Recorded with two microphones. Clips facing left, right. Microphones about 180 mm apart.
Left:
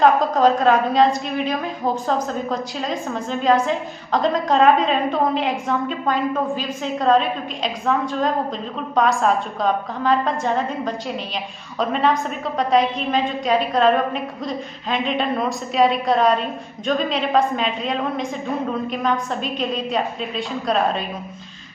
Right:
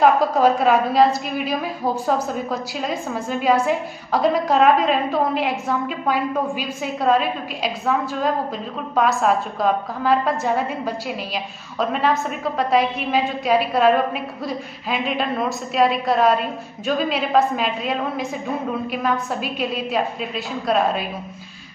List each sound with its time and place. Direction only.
0.0 s a woman's voice: 10° right (ahead or behind)